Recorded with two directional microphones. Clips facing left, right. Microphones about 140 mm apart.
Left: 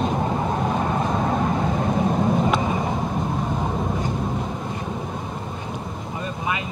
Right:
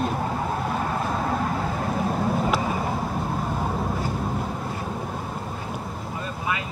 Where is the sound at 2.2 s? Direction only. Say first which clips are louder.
Left 3 dB; 5° right (ahead or behind).